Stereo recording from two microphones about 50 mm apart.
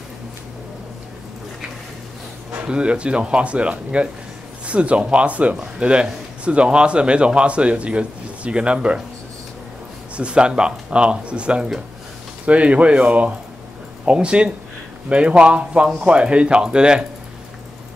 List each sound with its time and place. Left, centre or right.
2.5 s speech: right
10.1 s speech: right